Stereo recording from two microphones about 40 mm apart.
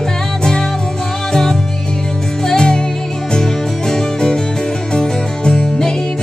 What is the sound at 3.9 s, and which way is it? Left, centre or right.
Music, centre.